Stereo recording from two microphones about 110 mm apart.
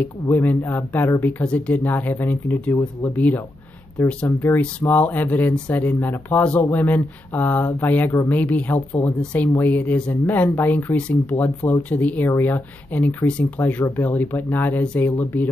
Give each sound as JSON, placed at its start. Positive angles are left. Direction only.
{"t": 0.0, "sound": "speech", "side_deg": 15}